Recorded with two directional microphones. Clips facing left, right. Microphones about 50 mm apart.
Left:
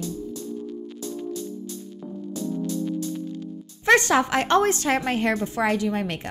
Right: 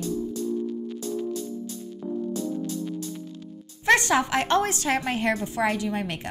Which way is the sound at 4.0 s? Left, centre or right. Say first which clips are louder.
Left 2 dB; left.